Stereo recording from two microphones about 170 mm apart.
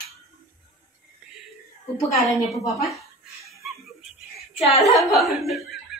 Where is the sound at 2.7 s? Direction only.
Centre (ahead or behind).